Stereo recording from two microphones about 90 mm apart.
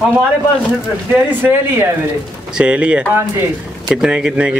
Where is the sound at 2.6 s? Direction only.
15° right (ahead or behind).